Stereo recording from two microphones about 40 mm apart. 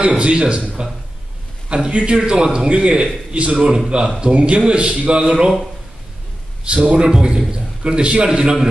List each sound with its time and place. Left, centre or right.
0.0 s a man's voice: right
1.7 s a man's voice: right
3.7 s a man's voice: centre
6.6 s a man's voice: right